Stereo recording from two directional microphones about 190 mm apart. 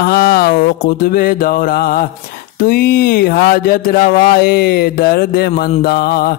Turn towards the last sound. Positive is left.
turn(degrees=55)  # may be behind; listen again after turning